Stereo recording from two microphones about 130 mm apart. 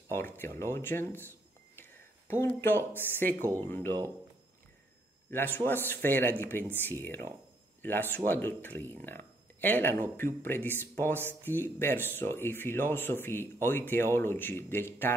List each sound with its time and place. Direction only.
0.1 s speech: 15° left (ahead or behind)
5.3 s speech: 15° left (ahead or behind)